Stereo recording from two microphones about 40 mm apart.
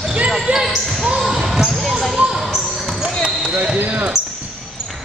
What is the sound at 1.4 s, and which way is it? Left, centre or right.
Basketball bounce, centre.